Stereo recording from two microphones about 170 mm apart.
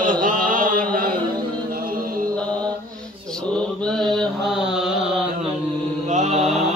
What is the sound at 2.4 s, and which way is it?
Mantra, 5° left (ahead or behind).